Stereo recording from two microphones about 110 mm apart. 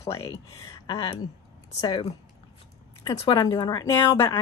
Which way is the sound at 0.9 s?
50° left (ahead or behind).